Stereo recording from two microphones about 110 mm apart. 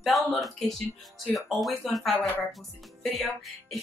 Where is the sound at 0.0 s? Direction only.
Centre (ahead or behind).